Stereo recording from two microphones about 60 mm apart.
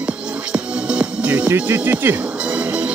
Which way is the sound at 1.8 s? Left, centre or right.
Right.